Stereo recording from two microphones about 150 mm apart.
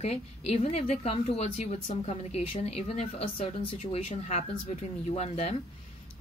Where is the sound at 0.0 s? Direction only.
45° left (ahead or behind).